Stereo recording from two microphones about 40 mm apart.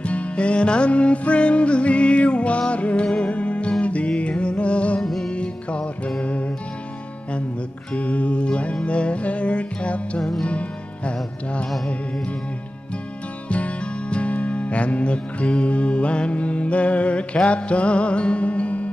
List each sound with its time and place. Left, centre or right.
0.0 s music: left
5.0 s music: centre
5.3 s music: left
7.9 s music: left
13.5 s music: left